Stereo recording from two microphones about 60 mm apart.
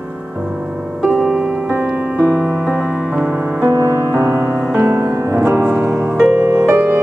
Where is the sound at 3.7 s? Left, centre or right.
Right.